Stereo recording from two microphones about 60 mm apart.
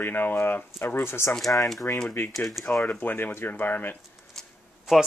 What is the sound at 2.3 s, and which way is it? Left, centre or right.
Speech, centre.